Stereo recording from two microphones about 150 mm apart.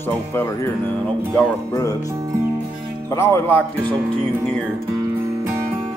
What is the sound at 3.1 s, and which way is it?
Speech, 15° left (ahead or behind).